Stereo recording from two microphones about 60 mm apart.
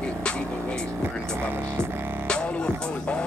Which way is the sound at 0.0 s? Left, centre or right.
Centre.